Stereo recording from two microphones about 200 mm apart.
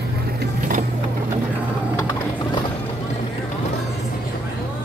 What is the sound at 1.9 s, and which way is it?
Mechanisms, 20° left (ahead or behind).